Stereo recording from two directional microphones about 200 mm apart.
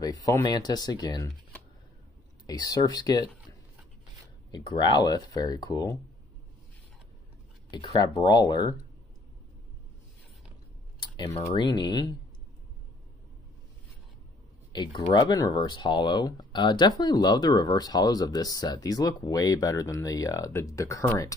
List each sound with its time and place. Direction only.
0.0 s speech: 20° left (ahead or behind)
2.4 s speech: 20° left (ahead or behind)
4.5 s speech: 20° left (ahead or behind)
7.7 s speech: 25° left (ahead or behind)
11.2 s speech: 25° left (ahead or behind)
14.7 s speech: 20° left (ahead or behind)